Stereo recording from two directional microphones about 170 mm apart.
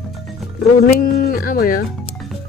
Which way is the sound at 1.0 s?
60° left (ahead or behind).